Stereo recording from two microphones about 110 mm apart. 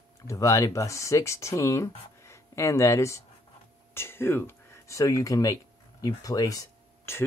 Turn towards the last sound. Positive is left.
turn(degrees=25)  # may be behind; listen again after turning